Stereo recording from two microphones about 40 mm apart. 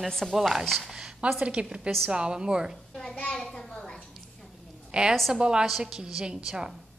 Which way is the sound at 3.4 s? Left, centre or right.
Centre.